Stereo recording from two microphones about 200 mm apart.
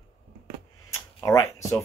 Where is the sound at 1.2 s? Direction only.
15° left (ahead or behind).